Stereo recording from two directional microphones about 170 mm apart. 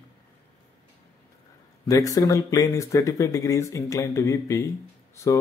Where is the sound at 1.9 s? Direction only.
20° left (ahead or behind).